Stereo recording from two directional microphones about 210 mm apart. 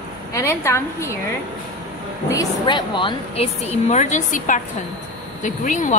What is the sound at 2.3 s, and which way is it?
Speech, 20° left (ahead or behind).